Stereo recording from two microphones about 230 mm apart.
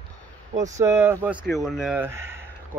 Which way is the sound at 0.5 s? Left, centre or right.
Right.